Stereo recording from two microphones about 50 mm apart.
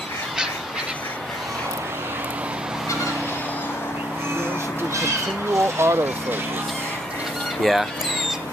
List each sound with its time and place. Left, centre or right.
5.5 s speech: right
7.6 s speech: centre